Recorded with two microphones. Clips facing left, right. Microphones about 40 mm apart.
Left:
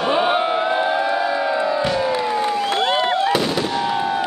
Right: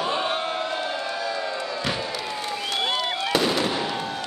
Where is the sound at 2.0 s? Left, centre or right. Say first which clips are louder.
Left 10 dB; left.